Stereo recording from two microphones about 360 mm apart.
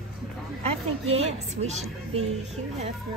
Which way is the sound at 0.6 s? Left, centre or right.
Centre.